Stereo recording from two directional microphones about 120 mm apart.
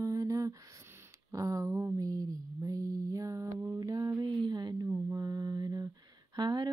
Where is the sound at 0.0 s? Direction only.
30° right (ahead or behind).